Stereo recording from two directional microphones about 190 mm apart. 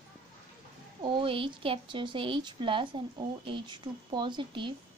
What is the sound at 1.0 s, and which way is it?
A woman's voice, 25° right (ahead or behind).